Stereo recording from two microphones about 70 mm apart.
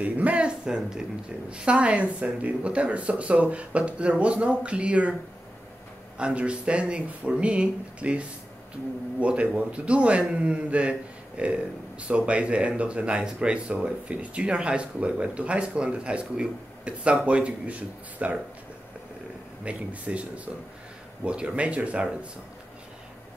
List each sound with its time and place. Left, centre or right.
0.0 s speech: right
6.1 s speech: centre
19.6 s speech: centre